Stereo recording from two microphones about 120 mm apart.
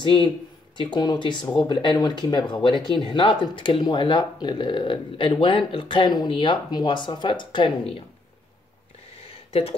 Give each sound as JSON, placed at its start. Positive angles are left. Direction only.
{"t": 0.0, "sound": "speech", "side_deg": 45}
{"t": 9.5, "sound": "speech", "side_deg": 60}